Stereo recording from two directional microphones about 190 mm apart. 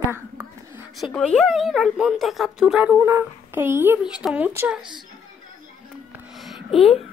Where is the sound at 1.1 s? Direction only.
5° left (ahead or behind).